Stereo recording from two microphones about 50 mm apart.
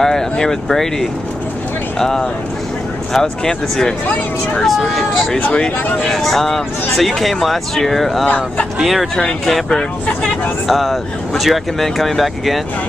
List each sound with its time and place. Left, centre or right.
0.0 s speech: centre
5.5 s speech: left
6.0 s speech: centre
9.1 s speech: centre
10.7 s speech: centre